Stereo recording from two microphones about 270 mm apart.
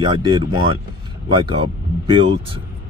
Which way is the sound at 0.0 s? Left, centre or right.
Centre.